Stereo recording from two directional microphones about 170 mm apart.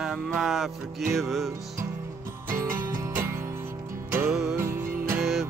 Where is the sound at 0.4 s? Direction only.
Centre (ahead or behind).